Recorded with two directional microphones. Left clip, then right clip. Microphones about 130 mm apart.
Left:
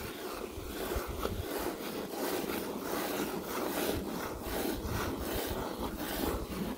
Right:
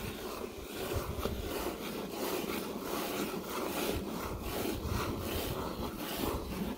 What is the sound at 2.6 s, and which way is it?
Boat, 15° left (ahead or behind).